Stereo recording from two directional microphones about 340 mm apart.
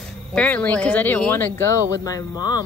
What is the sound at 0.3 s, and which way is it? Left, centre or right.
Speech, centre.